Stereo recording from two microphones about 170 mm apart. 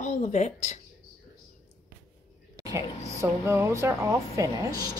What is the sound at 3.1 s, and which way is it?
Speech, 15° right (ahead or behind).